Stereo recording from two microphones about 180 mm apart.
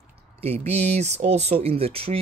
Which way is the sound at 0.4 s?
35° right (ahead or behind).